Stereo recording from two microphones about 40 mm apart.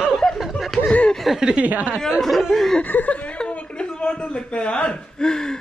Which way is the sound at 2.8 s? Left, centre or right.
Left.